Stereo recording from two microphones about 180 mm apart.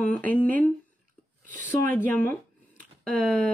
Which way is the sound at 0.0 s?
10° left (ahead or behind).